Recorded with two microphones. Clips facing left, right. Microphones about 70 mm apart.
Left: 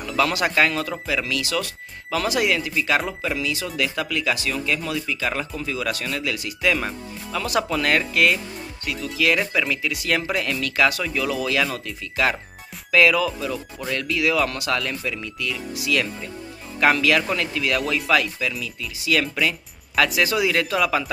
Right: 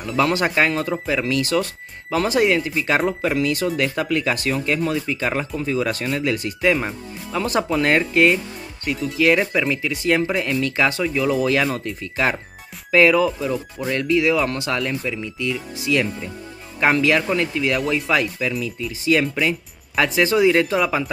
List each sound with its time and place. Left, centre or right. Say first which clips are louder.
0.2 s speech: right 1 dB; right
9.4 s speech: right 3 dB; centre
17.7 s speech: left 1 dB; centre
18.6 s speech: right 6 dB; right